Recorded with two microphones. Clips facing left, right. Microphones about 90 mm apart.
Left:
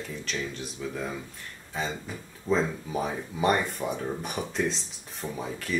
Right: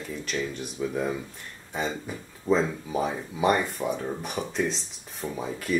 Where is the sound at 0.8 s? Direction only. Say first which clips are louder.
Right 6 dB; 20° right (ahead or behind).